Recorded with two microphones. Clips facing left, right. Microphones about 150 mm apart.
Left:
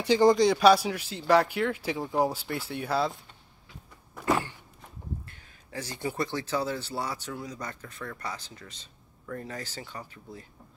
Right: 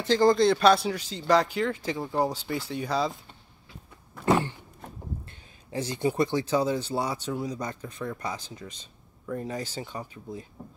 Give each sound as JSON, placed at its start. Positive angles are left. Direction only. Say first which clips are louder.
{"t": 0.0, "sound": "speech", "louder": "even", "side_deg": 15}
{"t": 4.3, "sound": "a sound", "louder": "right 4 dB", "side_deg": -25}
{"t": 5.7, "sound": "speech", "louder": "right 7 dB", "side_deg": -20}